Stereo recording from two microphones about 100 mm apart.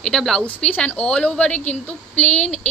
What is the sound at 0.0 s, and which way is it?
Speech, 5° left (ahead or behind).